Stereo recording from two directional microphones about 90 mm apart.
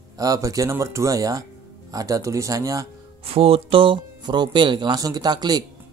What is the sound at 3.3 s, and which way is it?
Speech, 90° right.